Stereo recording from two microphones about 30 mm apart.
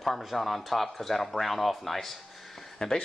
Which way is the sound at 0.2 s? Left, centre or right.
Centre.